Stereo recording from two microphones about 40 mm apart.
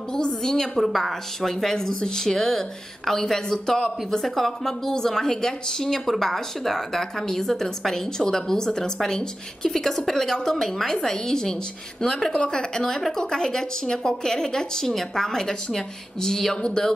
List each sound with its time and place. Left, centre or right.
0.1 s a woman's voice: centre